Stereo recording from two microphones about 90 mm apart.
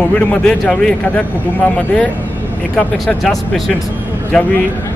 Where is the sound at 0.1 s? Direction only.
10° left (ahead or behind).